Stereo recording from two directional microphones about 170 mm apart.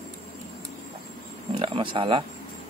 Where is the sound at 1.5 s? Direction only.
30° right (ahead or behind).